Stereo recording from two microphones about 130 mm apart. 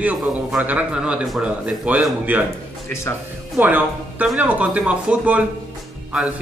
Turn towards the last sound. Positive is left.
turn(degrees=-10)  # may be behind; listen again after turning